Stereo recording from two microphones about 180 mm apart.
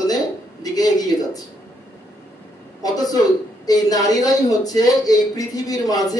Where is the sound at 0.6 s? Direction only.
20° left (ahead or behind).